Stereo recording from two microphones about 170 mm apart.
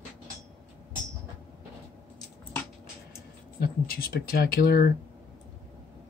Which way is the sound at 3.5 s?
60° left (ahead or behind).